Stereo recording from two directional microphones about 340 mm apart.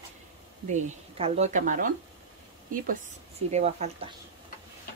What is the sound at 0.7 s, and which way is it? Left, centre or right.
Speech, right.